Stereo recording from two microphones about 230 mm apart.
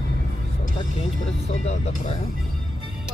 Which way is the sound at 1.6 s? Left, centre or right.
Left.